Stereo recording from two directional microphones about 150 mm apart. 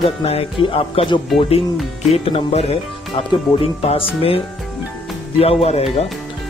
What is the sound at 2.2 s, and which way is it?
A woman's voice, 40° left (ahead or behind).